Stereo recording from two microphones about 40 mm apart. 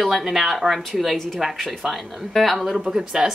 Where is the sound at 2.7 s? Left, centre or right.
Centre.